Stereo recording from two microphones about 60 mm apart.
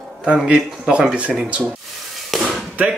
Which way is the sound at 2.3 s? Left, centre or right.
Centre.